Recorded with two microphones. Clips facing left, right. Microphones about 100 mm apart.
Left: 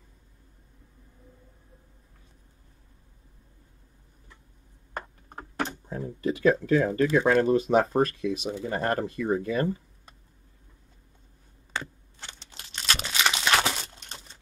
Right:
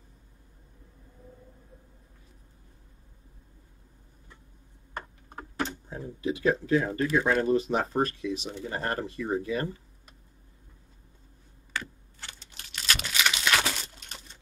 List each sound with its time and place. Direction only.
4.9 s computer keyboard: 50° left (ahead or behind)
7.2 s speech: 50° left (ahead or behind)
11.7 s crumpling: 25° left (ahead or behind)